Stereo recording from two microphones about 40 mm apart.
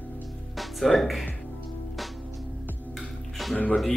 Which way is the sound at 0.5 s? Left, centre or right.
Centre.